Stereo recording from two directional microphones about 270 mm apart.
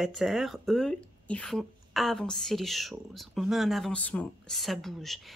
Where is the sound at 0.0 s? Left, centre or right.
Centre.